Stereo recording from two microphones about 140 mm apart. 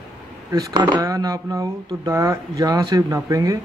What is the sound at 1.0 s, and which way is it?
A man's voice, 25° right (ahead or behind).